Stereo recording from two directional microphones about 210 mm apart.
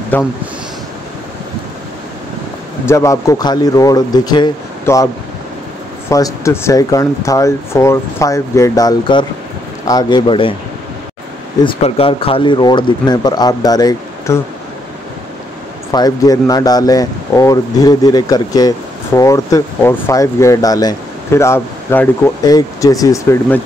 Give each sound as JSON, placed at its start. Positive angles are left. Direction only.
{"t": 0.1, "sound": "speech", "side_deg": 10}
{"t": 2.9, "sound": "speech", "side_deg": 15}
{"t": 11.6, "sound": "speech", "side_deg": 25}
{"t": 15.9, "sound": "speech", "side_deg": 20}